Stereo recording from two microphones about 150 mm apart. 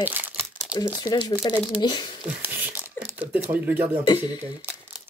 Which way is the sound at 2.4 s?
10° right (ahead or behind).